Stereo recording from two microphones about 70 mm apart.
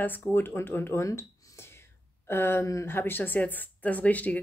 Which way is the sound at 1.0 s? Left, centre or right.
Left.